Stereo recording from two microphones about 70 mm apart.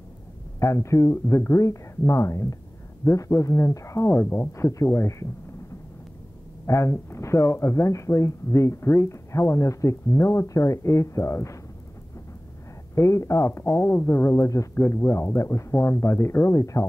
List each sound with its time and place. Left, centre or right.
0.6 s speech: left
4.5 s speech: left
6.6 s speech: left
12.9 s speech: left
13.7 s speech: left
14.0 s speech: left
14.8 s speech: left